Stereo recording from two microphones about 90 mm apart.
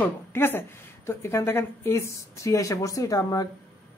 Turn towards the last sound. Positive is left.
turn(degrees=45)  # may be behind; listen again after turning